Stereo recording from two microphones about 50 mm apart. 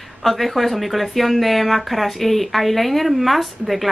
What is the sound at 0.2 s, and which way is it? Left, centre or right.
Speech, centre.